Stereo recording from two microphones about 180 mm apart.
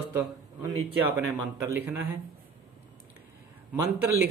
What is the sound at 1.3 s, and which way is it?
Speech, 10° right (ahead or behind).